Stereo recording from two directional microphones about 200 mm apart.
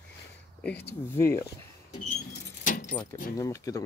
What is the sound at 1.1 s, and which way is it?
Speech, 15° left (ahead or behind).